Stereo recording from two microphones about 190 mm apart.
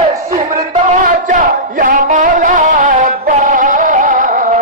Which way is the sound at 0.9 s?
40° right (ahead or behind).